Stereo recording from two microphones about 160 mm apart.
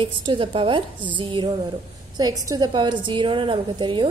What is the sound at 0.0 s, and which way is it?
A woman's voice, 30° right (ahead or behind).